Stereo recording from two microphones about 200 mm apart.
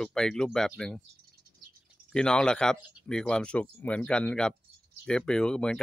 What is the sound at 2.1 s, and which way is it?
Speech, 5° left (ahead or behind).